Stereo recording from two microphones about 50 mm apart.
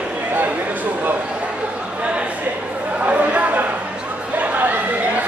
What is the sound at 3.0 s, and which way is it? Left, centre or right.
Chatter, right.